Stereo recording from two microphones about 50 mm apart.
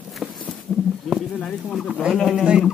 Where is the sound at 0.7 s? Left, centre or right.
Centre.